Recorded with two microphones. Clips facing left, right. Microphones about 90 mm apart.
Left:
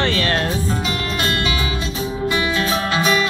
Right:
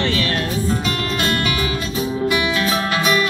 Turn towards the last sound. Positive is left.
turn(degrees=25)  # may be behind; listen again after turning